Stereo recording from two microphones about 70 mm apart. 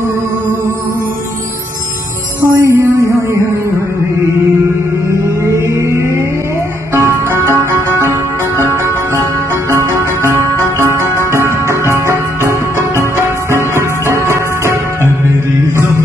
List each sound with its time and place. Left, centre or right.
2.4 s music: right
5.2 s music: right
6.9 s music: right
11.4 s music: left
11.9 s music: right
13.7 s music: right